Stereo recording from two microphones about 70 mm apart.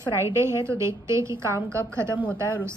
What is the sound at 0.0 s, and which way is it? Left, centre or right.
A woman's voice, right.